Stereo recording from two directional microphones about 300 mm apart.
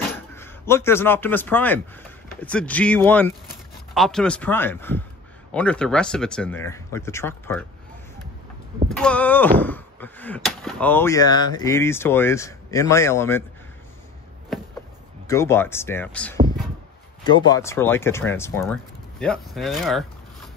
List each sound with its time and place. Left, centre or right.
0.4 s a man's voice: centre
8.9 s speech: centre
15.2 s speech: centre